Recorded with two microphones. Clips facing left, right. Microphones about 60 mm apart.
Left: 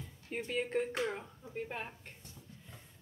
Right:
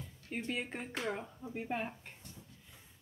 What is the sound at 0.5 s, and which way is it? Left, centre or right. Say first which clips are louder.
Speech: left 8 dB; centre.